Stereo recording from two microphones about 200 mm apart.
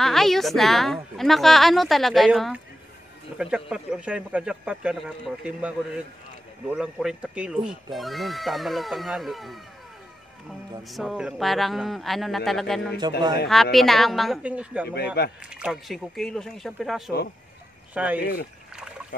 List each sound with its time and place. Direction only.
0.0 s speech: centre (ahead or behind)
10.8 s speech: centre (ahead or behind)
13.0 s speech: 20° right (ahead or behind)
13.5 s speech: centre (ahead or behind)
15.0 s speech: 50° left (ahead or behind)
15.5 s speech: 5° right (ahead or behind)
18.2 s speech: 45° left (ahead or behind)